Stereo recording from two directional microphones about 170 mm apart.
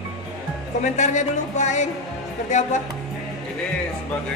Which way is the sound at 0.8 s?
45° left (ahead or behind).